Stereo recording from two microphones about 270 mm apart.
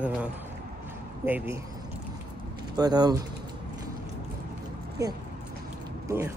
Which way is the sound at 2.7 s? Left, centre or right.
Centre.